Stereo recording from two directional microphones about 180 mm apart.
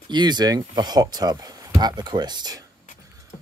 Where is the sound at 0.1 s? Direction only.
25° right (ahead or behind).